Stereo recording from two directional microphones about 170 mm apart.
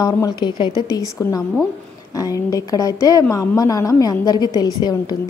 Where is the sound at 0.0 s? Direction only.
25° left (ahead or behind).